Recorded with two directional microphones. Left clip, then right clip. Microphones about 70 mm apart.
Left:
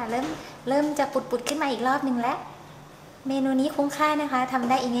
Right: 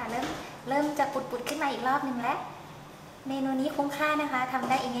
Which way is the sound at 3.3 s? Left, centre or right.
Left.